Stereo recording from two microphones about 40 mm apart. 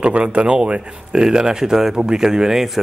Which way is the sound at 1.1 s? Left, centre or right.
Centre.